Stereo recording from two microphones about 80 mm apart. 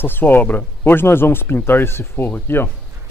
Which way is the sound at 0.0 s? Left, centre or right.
Left.